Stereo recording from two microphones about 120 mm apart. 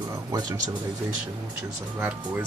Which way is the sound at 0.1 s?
30° right (ahead or behind).